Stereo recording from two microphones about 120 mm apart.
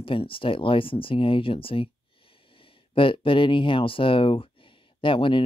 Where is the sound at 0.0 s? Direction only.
50° left (ahead or behind).